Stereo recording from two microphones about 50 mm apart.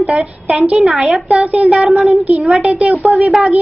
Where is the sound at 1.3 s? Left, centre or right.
Right.